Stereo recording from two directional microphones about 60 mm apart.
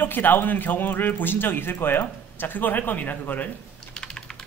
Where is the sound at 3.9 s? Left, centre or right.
Centre.